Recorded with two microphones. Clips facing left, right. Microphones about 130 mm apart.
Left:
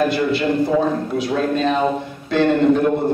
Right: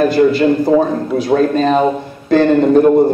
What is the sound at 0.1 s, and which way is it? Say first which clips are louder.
A man's voice: right 7 dB; 40° right (ahead or behind).